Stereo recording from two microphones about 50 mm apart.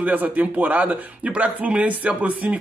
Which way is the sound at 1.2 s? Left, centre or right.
Centre.